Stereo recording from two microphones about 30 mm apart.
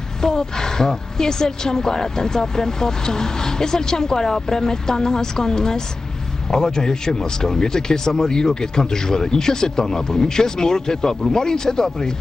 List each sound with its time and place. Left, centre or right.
0.2 s speech: centre